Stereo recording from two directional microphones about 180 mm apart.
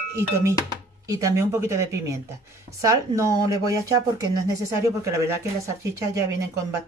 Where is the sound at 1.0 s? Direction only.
15° right (ahead or behind).